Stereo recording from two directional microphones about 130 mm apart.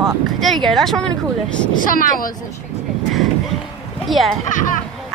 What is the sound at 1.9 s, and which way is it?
Speech, 90° left.